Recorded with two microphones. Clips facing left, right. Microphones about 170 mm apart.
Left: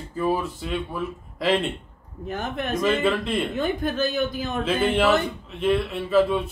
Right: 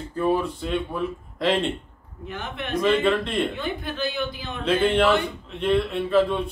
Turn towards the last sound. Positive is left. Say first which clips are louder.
# even
turn(degrees=5)  # may be behind; listen again after turning